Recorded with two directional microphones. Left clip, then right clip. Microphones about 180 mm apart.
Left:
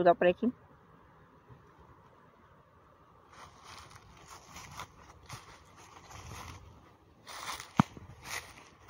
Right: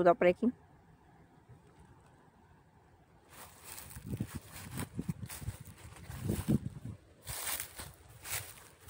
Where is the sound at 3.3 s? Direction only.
35° right (ahead or behind).